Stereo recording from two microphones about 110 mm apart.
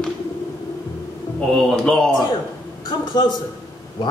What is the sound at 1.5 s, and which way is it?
Speech, 5° left (ahead or behind).